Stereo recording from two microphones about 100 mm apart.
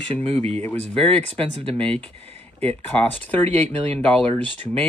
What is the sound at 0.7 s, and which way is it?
Speech, 10° left (ahead or behind).